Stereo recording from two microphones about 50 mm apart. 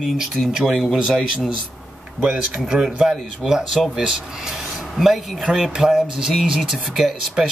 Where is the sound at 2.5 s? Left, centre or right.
Centre.